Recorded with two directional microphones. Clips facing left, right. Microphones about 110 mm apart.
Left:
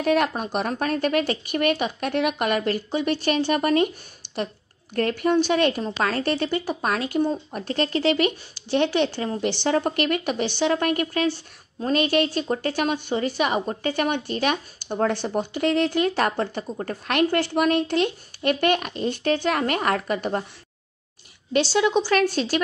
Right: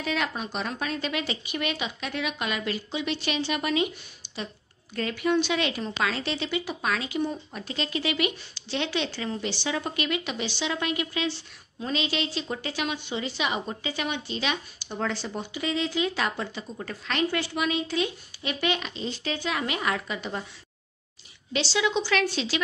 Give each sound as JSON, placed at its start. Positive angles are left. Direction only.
{"t": 0.0, "sound": "a woman's voice", "side_deg": 50}
{"t": 5.8, "sound": "speech", "side_deg": 35}
{"t": 6.1, "sound": "a woman's voice", "side_deg": 50}
{"t": 21.5, "sound": "a woman's voice", "side_deg": 50}